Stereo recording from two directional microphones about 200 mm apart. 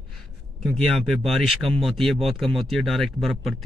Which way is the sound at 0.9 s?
Centre (ahead or behind).